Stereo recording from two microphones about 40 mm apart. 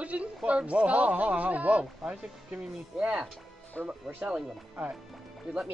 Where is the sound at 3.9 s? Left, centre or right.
Right.